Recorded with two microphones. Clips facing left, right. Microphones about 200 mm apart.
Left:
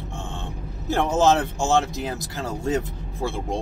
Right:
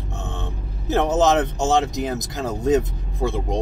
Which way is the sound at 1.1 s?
20° right (ahead or behind).